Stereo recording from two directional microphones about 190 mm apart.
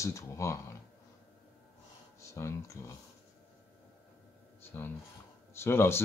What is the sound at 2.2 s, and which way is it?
Speech, 15° left (ahead or behind).